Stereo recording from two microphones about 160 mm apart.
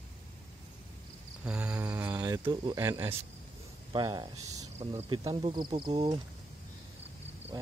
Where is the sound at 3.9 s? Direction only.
30° right (ahead or behind).